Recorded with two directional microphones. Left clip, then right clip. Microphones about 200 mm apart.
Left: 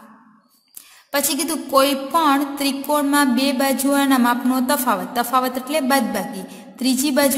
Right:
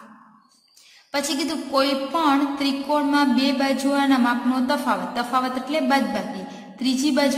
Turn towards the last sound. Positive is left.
turn(degrees=45)  # may be behind; listen again after turning